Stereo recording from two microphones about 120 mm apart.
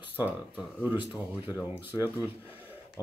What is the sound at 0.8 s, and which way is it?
Speech, 15° right (ahead or behind).